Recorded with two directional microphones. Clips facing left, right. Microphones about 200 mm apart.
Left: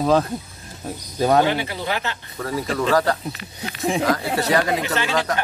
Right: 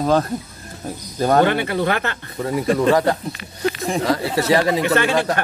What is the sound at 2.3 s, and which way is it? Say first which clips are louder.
Speech: right 6 dB; 20° right (ahead or behind).